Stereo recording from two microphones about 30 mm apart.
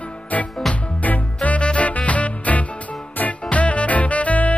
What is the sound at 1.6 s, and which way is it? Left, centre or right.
Music, left.